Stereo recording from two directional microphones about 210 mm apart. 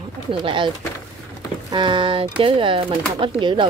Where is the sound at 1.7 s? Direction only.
20° right (ahead or behind).